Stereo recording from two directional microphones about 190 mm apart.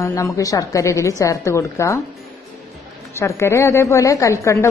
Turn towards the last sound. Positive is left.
turn(degrees=15)  # may be behind; listen again after turning